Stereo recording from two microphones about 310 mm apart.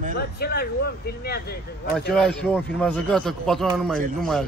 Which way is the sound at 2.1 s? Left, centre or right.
Centre.